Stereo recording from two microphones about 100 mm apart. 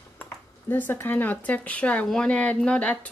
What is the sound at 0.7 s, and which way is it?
Speech, 20° left (ahead or behind).